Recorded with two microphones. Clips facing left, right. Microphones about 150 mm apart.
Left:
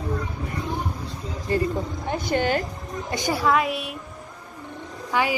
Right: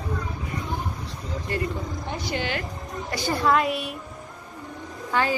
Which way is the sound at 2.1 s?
50° left (ahead or behind).